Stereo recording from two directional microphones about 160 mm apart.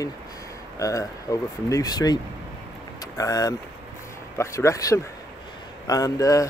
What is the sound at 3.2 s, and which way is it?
Speech, 25° left (ahead or behind).